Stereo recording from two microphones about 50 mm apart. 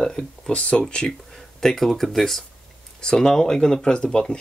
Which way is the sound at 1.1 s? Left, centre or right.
Centre.